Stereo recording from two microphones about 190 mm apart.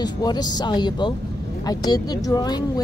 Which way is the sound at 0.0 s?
20° left (ahead or behind).